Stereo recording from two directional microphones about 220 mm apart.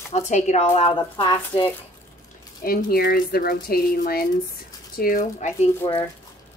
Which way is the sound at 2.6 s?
40° left (ahead or behind).